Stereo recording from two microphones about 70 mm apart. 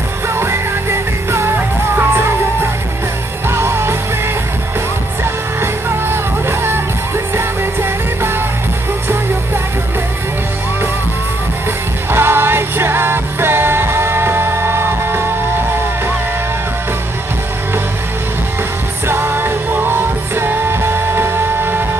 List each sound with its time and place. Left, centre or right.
0.3 s music: right
3.4 s music: right
7.3 s music: right
12.1 s music: right
19.0 s music: right